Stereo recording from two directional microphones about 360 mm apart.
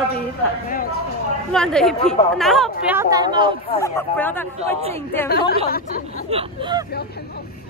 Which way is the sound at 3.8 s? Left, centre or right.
Centre.